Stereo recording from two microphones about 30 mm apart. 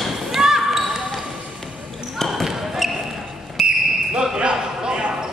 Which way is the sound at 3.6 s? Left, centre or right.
Centre.